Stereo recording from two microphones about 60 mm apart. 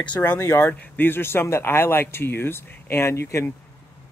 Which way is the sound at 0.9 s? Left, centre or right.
Left.